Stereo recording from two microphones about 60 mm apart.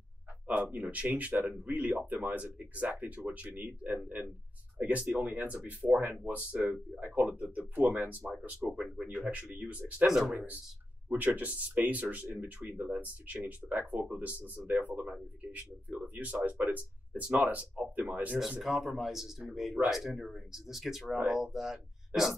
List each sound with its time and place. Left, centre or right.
0.5 s speech: right
8.5 s speech: centre
9.2 s speech: right
10.0 s speech: centre
11.1 s speech: right
18.6 s speech: centre